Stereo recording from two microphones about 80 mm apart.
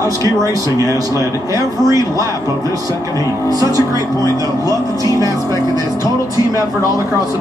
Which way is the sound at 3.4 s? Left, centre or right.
Right.